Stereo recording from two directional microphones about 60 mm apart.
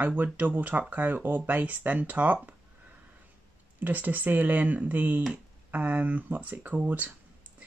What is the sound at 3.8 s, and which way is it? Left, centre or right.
Speech, right.